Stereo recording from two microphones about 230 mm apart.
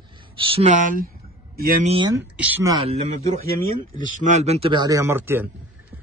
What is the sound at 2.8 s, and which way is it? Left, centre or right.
A man's voice, right.